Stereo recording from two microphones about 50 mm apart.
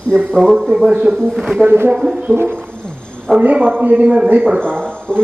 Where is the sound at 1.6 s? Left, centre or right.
Right.